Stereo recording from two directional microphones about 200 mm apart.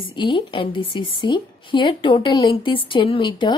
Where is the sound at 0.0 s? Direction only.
25° left (ahead or behind).